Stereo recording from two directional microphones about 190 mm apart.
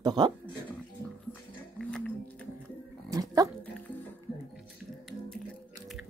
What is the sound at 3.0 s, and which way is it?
Dog, 20° right (ahead or behind).